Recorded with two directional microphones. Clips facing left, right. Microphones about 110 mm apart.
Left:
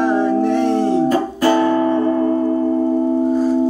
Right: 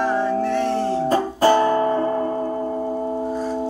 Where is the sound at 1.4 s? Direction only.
30° right (ahead or behind).